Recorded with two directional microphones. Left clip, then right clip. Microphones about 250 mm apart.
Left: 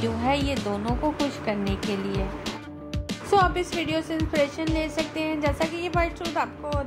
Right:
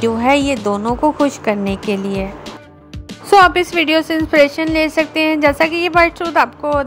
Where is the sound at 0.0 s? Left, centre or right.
Right.